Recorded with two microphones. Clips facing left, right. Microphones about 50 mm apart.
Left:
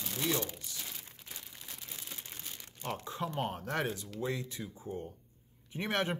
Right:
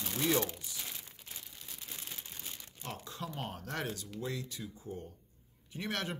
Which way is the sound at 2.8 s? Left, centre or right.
Left.